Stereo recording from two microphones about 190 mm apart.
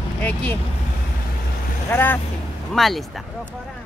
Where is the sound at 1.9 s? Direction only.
10° left (ahead or behind).